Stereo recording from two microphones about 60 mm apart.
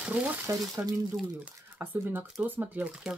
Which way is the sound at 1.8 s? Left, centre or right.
Right.